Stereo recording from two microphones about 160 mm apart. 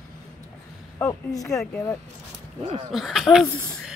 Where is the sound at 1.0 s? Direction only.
20° left (ahead or behind).